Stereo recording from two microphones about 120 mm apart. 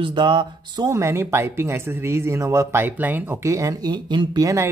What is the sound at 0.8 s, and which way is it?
Speech, 20° right (ahead or behind).